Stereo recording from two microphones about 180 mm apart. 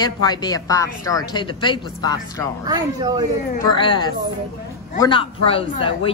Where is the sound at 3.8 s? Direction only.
25° left (ahead or behind).